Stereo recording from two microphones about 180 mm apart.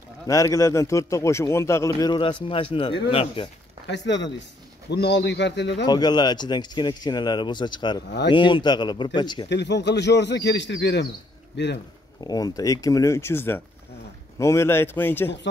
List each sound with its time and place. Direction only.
0.3 s speech: 20° left (ahead or behind)
3.8 s speech: 75° left (ahead or behind)
5.9 s speech: 20° left (ahead or behind)
9.5 s speech: 75° left (ahead or behind)
12.2 s speech: 20° left (ahead or behind)